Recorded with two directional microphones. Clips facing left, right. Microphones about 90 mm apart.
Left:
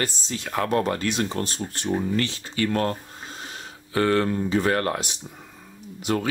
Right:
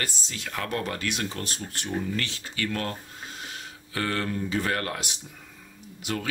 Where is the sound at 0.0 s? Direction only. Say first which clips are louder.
Left 6 dB; 35° left (ahead or behind).